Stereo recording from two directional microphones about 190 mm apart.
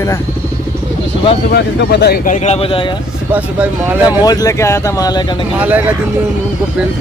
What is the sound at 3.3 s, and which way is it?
Speech, 10° right (ahead or behind).